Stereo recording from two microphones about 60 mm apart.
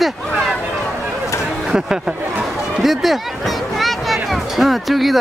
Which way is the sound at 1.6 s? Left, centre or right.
Centre.